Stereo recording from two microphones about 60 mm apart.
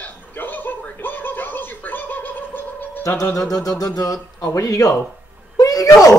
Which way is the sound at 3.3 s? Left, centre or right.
Left.